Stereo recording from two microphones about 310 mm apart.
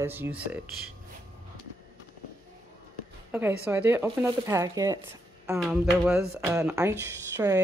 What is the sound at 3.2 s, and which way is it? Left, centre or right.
Speech, centre.